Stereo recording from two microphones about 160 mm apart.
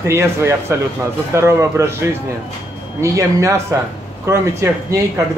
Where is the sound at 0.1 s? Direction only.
15° right (ahead or behind).